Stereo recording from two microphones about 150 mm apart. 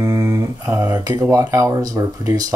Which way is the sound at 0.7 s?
10° right (ahead or behind).